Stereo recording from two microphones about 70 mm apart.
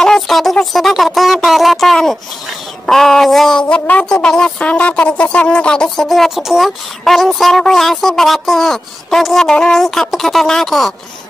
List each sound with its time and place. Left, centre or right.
0.0 s a sound: centre
2.9 s speech: centre
6.0 s speech: centre